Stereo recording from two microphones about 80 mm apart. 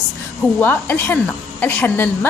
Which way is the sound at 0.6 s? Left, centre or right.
Left.